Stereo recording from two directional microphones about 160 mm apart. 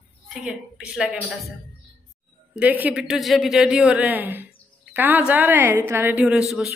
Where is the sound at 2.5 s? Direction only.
10° right (ahead or behind).